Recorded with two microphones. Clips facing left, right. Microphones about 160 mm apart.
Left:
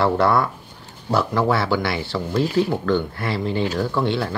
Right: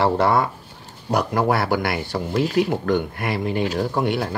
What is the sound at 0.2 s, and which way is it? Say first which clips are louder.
Speech: even; 20° right (ahead or behind).